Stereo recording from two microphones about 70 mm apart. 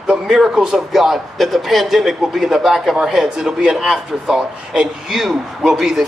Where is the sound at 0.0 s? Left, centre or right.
Centre.